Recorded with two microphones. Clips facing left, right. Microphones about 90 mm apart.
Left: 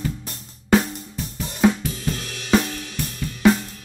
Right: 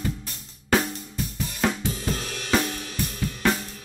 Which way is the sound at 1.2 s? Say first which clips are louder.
Right 1 dB; 25° left (ahead or behind).